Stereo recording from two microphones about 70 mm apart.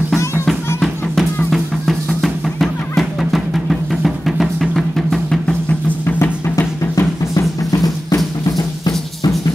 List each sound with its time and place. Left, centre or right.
0.7 s music: centre
7.0 s music: left
8.5 s drum: left